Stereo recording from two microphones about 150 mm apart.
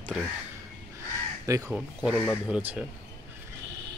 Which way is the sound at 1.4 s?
20° right (ahead or behind).